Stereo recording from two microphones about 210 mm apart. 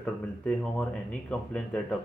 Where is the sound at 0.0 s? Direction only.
5° left (ahead or behind).